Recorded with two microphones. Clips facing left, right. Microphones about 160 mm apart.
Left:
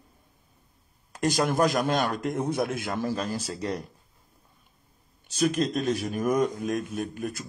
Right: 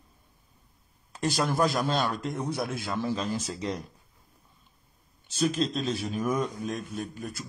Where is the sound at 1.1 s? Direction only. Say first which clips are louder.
Left 3 dB; 45° left (ahead or behind).